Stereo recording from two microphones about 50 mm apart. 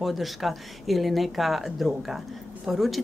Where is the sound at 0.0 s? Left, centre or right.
Centre.